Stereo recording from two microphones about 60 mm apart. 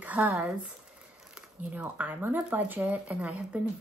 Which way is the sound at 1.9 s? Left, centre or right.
Right.